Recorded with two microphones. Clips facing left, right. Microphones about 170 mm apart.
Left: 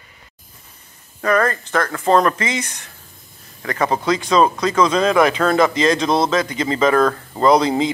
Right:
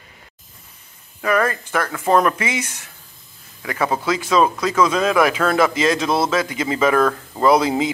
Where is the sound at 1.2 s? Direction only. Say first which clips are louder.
Left 1 dB; 5° right (ahead or behind).